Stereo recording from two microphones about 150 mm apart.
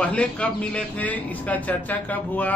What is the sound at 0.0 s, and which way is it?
A man's voice, 10° left (ahead or behind).